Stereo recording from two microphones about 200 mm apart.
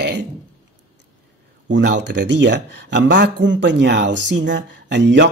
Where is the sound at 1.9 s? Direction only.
60° right (ahead or behind).